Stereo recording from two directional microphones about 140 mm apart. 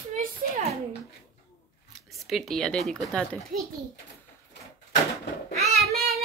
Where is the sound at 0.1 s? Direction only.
55° right (ahead or behind).